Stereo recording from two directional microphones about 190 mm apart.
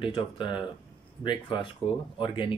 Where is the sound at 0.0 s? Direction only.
25° left (ahead or behind).